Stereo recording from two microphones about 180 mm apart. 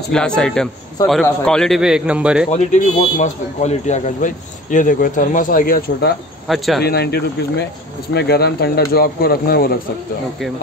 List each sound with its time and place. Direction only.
0.1 s a man's voice: 5° left (ahead or behind)
2.5 s a man's voice: 40° left (ahead or behind)
6.4 s a man's voice: centre (ahead or behind)
6.8 s speech: 65° left (ahead or behind)